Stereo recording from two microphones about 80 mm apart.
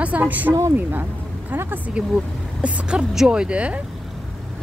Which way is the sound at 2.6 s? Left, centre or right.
Centre.